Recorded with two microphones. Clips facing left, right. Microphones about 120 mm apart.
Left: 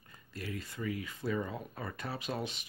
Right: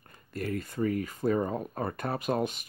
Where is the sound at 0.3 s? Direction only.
50° right (ahead or behind).